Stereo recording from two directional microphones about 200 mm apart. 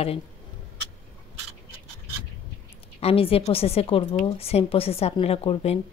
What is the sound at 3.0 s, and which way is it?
A woman's voice, 30° left (ahead or behind).